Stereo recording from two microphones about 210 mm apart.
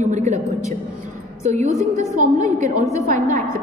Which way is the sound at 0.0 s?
35° right (ahead or behind).